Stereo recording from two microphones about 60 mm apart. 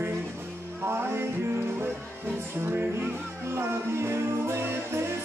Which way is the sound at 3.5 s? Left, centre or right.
Right.